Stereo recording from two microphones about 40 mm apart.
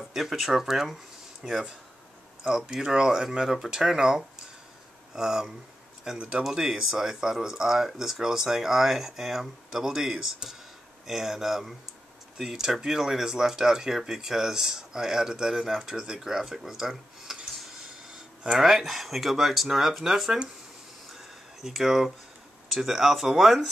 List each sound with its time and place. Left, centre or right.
0.1 s speech: centre
6.1 s speech: right
6.5 s speech: centre
18.5 s speech: centre
21.1 s a sound: centre
22.7 s speech: centre